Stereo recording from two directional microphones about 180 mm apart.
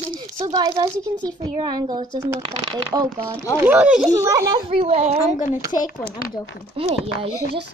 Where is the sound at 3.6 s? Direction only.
10° right (ahead or behind).